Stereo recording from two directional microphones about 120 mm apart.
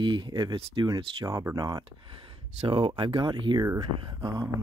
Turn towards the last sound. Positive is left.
turn(degrees=-35)  # may be behind; listen again after turning